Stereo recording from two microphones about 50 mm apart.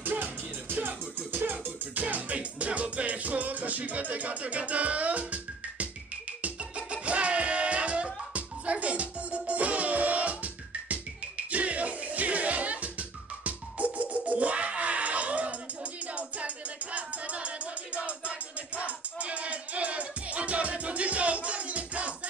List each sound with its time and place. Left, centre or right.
0.0 s music: right